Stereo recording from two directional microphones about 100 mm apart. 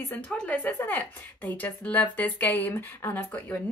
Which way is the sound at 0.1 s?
15° left (ahead or behind).